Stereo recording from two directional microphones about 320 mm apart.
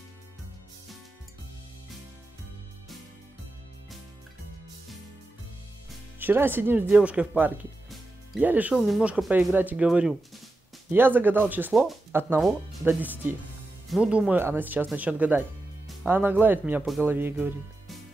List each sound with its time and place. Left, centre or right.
6.1 s speech: centre